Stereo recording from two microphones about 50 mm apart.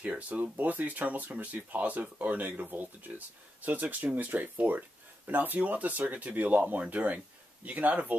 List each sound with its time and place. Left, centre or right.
0.1 s speech: right
0.6 s speech: right